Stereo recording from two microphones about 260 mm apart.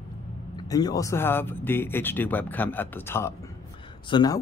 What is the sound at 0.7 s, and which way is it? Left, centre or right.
Speech, centre.